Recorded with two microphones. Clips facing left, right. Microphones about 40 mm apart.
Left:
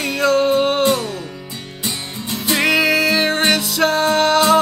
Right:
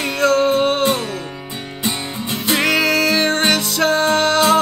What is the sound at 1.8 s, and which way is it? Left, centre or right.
Music, right.